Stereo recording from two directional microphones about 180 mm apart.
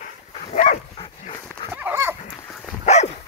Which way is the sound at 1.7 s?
10° right (ahead or behind).